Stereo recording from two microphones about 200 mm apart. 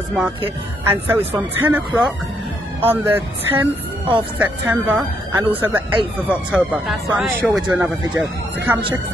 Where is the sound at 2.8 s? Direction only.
10° right (ahead or behind).